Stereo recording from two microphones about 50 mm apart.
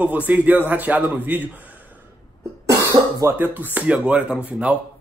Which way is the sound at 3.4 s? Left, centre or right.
Right.